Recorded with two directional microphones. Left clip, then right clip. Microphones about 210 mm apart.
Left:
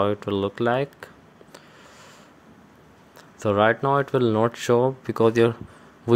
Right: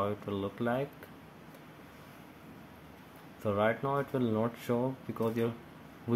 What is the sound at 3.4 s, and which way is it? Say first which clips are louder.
Speech: left 11 dB; 55° left (ahead or behind).